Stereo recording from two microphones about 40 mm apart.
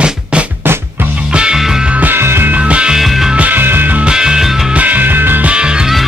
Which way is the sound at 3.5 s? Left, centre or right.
Right.